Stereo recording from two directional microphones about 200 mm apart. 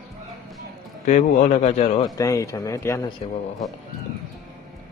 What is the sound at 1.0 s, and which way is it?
Speech, 40° left (ahead or behind).